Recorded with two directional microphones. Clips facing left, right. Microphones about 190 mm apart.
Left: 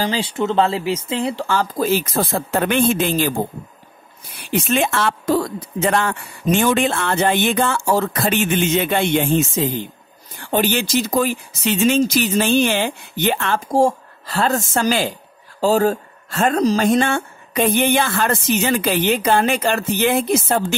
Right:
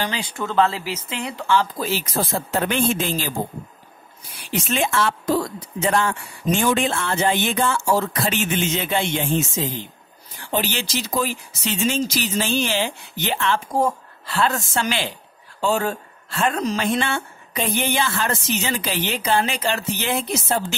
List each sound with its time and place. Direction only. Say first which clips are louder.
0.0 s speech: left 6 dB; 30° left (ahead or behind); by 3.3 s 60° left (ahead or behind)
4.5 s a woman's voice: left 4 dB; 55° left (ahead or behind)
13.7 s a woman's voice: left 5 dB; 30° left (ahead or behind); by 20.6 s 55° left (ahead or behind)